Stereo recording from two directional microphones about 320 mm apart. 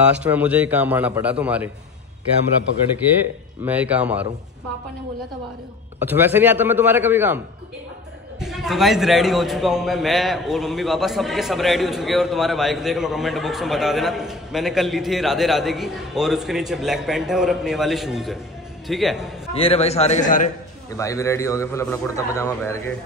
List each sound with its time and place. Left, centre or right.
0.0 s a man's voice: centre
3.6 s a man's voice: centre
5.9 s a man's voice: centre
19.5 s a man's voice: centre
20.9 s a man's voice: centre